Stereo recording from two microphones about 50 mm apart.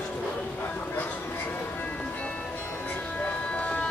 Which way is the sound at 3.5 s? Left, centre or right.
Left.